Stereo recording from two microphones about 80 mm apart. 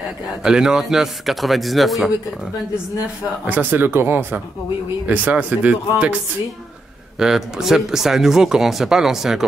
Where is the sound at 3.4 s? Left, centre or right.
Right.